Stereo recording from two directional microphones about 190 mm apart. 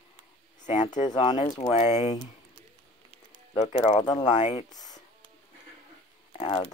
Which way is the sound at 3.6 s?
25° left (ahead or behind).